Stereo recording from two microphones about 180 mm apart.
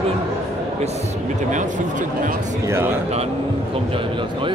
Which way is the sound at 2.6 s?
15° right (ahead or behind).